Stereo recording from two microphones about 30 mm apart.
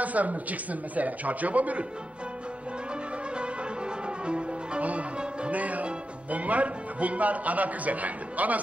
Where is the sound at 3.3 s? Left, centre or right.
Right.